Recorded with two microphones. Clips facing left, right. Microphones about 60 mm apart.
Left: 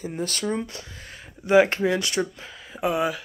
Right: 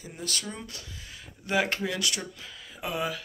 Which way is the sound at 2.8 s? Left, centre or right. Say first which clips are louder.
Left 7 dB; left.